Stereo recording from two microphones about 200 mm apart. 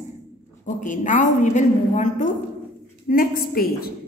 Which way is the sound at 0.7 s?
40° left (ahead or behind).